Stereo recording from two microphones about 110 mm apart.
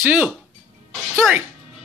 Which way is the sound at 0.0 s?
15° right (ahead or behind).